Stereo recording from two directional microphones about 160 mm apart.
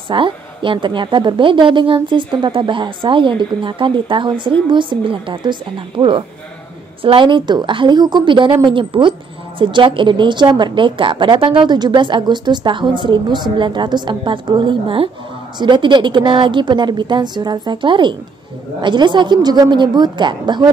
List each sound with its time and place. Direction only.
0.1 s a woman's voice: 30° right (ahead or behind)